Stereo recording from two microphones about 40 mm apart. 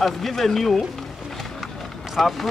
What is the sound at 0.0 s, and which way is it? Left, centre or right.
Speech, centre.